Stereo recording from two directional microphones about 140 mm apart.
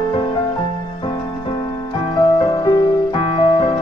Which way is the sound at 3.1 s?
40° left (ahead or behind).